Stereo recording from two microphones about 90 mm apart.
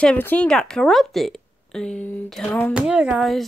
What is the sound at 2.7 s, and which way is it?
Speech, 10° right (ahead or behind).